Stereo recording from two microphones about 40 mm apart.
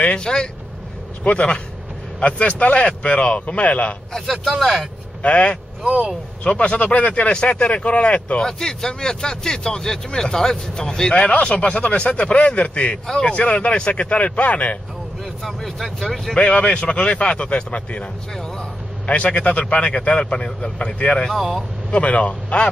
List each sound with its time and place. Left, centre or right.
0.0 s speech: left
1.2 s speech: left
4.1 s speech: centre
5.2 s speech: left
5.9 s speech: right
6.4 s speech: left
8.4 s speech: centre; by 14.8 s left
15.4 s speech: centre
16.3 s speech: left
19.0 s speech: left
21.3 s speech: centre
21.9 s speech: left